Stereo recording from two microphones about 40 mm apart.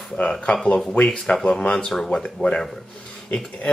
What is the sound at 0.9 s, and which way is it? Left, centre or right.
Speech, left.